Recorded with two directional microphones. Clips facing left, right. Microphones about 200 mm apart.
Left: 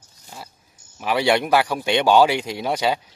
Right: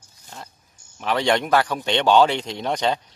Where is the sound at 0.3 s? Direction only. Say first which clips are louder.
Left 1 dB; 10° left (ahead or behind).